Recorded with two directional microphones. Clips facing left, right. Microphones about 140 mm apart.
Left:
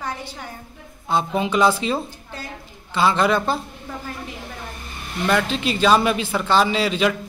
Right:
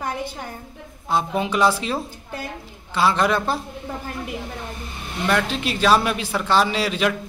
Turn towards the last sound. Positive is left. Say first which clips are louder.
# left 2 dB
turn(degrees=0)  # may be behind; listen again after turning